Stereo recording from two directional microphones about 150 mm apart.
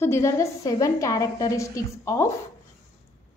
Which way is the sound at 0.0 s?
20° left (ahead or behind).